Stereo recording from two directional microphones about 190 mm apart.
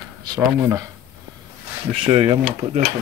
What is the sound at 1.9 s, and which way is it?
Speech, 30° right (ahead or behind).